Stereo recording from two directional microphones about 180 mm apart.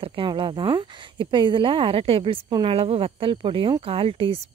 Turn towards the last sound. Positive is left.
turn(degrees=-30)  # may be behind; listen again after turning